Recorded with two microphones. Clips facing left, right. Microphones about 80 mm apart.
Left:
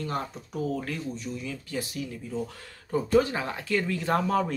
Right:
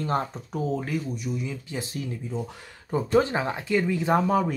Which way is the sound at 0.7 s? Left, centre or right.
Centre.